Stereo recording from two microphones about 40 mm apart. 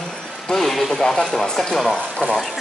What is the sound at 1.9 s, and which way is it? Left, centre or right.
Speech, left.